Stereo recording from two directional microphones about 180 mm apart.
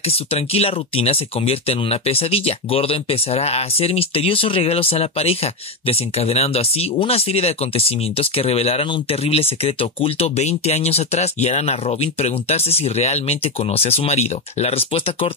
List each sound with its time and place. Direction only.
0.0 s speech: 35° left (ahead or behind)